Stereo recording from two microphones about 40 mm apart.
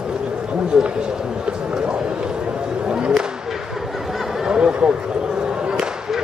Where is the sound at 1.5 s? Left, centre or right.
Right.